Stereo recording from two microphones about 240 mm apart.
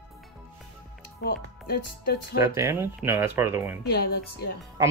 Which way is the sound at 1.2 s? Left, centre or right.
Left.